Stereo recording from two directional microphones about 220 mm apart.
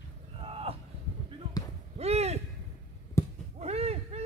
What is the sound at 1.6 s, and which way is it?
Basketball bounce, 15° left (ahead or behind).